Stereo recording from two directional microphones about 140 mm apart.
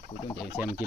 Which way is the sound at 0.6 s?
10° right (ahead or behind).